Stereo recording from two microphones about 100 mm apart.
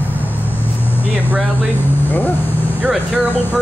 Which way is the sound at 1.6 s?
20° left (ahead or behind).